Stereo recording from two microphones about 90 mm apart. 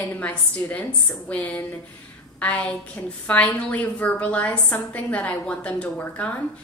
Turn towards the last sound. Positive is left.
turn(degrees=15)  # may be behind; listen again after turning